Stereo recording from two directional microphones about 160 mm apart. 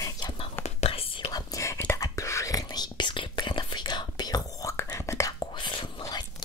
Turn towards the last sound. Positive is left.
turn(degrees=25)  # may be behind; listen again after turning